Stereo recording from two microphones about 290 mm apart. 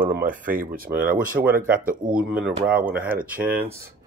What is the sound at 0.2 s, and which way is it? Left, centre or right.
Speech, right.